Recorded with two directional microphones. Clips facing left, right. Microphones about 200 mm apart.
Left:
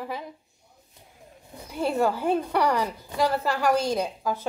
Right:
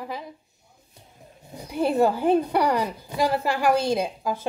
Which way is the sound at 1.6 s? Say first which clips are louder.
Right 4 dB; 15° right (ahead or behind).